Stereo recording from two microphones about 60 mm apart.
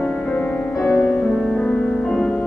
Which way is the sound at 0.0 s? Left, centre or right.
Centre.